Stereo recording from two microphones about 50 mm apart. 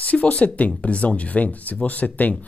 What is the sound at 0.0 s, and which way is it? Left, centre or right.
Speech, left.